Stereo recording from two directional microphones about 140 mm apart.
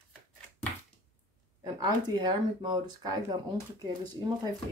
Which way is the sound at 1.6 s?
30° right (ahead or behind).